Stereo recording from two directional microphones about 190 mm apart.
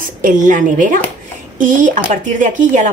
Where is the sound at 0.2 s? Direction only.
45° right (ahead or behind).